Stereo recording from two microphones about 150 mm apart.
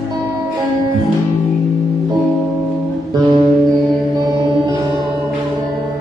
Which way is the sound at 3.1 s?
30° right (ahead or behind).